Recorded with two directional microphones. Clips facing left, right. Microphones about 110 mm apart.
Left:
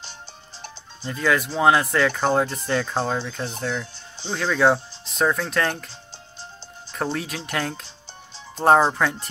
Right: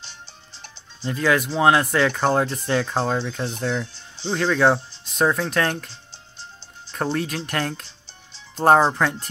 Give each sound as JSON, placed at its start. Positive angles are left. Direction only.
{"t": 1.0, "sound": "speech", "side_deg": 0}
{"t": 6.9, "sound": "speech", "side_deg": 0}